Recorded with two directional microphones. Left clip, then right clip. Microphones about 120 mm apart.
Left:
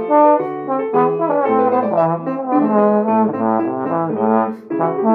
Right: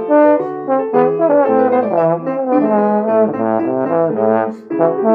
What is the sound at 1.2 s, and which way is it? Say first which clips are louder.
Brass instrument: right 5 dB; 60° right (ahead or behind).